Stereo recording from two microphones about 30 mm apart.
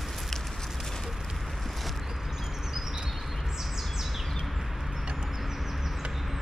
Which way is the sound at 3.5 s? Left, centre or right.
Centre.